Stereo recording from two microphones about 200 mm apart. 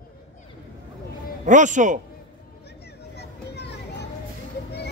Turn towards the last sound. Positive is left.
turn(degrees=55)  # may be behind; listen again after turning